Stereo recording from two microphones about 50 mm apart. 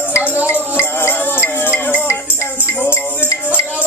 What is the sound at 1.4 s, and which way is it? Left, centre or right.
Music, left.